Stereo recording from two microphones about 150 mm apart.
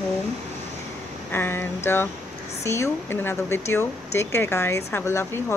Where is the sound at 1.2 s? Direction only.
15° left (ahead or behind).